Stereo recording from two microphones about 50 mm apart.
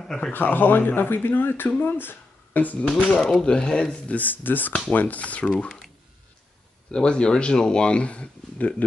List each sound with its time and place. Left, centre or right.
0.0 s speech: centre
0.3 s speech: left
3.2 s speech: centre
4.1 s speech: left
5.6 s speech: centre
6.9 s speech: centre